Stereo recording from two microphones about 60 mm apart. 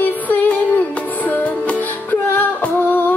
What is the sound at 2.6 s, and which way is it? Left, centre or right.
Female singing, left.